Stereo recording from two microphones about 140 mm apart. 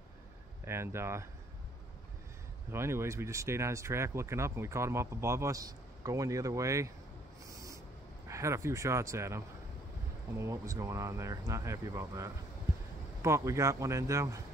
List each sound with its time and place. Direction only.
0.7 s speech: 20° right (ahead or behind)
2.7 s speech: 20° right (ahead or behind)
7.4 s owl: 25° right (ahead or behind)
8.3 s speech: 20° right (ahead or behind)